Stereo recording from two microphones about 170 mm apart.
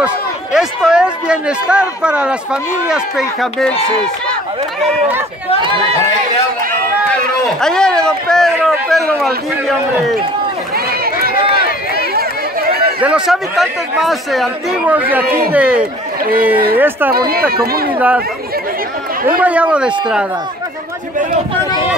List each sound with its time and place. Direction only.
0.0 s speech: 5° right (ahead or behind)
7.6 s a sound: 5° left (ahead or behind)
8.5 s a man's voice: centre (ahead or behind)
10.9 s run: 65° right (ahead or behind)
13.0 s a man's voice: 5° right (ahead or behind)
17.3 s speech: 65° right (ahead or behind)
17.9 s a man's voice: 10° right (ahead or behind)
19.4 s a man's voice: 10° right (ahead or behind)